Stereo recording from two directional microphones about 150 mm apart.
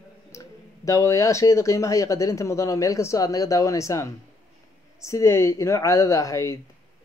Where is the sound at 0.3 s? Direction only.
20° left (ahead or behind).